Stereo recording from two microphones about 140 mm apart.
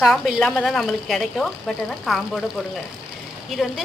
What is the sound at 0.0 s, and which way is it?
Speech, 5° left (ahead or behind).